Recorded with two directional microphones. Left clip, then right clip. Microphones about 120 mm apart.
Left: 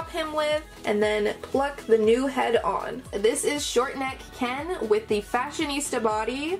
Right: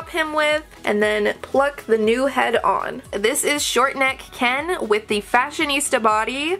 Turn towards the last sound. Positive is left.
turn(degrees=-40)  # may be behind; listen again after turning